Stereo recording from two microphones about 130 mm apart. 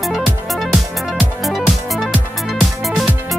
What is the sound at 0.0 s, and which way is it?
Music, centre (ahead or behind).